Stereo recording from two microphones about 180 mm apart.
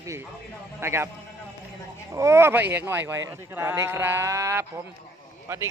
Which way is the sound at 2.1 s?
15° right (ahead or behind).